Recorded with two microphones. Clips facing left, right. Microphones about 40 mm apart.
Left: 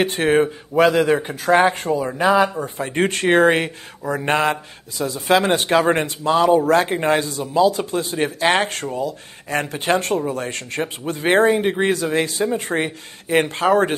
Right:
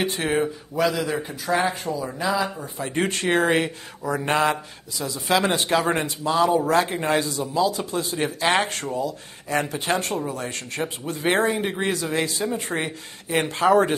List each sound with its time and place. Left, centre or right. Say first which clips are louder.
0.0 s speech: left 6 dB; left
4.2 s speech: left 2 dB; centre
4.9 s speech: left 5 dB; left
11.2 s speech: left 6 dB; left
11.9 s speech: left 5 dB; left
12.7 s speech: left 5 dB; left